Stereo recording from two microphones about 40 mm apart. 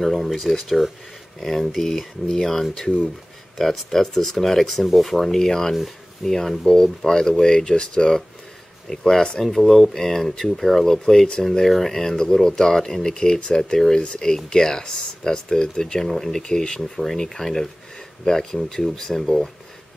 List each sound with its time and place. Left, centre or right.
0.0 s speech: centre